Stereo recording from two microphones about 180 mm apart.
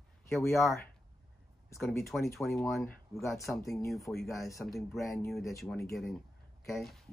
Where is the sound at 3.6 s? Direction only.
Centre (ahead or behind).